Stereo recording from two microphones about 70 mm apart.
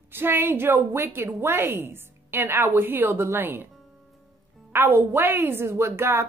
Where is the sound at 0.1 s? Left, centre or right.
Right.